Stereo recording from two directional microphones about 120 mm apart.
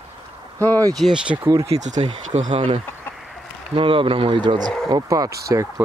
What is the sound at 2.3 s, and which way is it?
Speech, 80° right.